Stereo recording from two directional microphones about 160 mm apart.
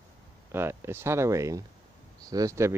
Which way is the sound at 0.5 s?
15° right (ahead or behind).